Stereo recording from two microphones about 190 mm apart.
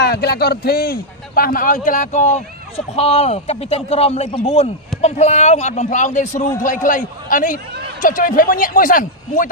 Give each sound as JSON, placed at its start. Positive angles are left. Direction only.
{"t": 0.0, "sound": "a man's voice", "side_deg": 60}